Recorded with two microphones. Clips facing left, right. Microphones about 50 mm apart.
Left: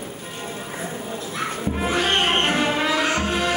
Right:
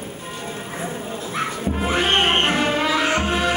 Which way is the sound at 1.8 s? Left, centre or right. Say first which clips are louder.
Right 2 dB; right.